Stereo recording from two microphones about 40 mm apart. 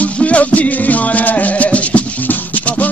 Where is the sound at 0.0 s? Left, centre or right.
Left.